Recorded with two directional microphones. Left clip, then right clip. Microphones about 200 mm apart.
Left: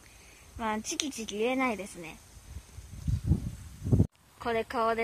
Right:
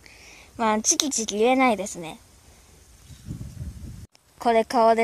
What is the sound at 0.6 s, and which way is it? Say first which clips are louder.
A woman's voice: right 11 dB; 45° right (ahead or behind).